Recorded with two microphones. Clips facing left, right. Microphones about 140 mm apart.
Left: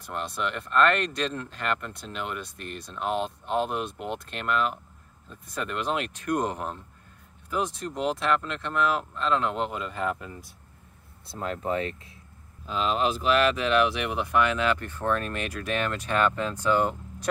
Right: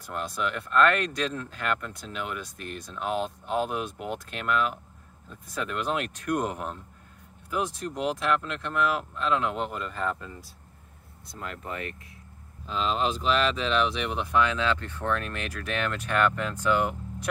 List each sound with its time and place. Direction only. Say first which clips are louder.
0.0 s speech: even; centre (ahead or behind)
11.3 s speech: left 7 dB; 35° left (ahead or behind)
12.6 s speech: left 1 dB; 5° left (ahead or behind)
16.5 s speech: left 1 dB; 10° right (ahead or behind)